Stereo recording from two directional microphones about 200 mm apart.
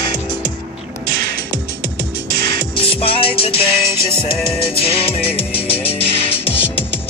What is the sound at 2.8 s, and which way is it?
Music, 30° left (ahead or behind).